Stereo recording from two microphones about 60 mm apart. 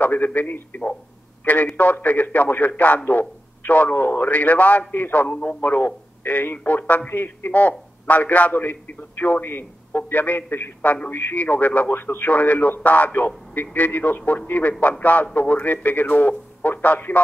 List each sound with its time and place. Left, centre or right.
0.0 s a man's voice: left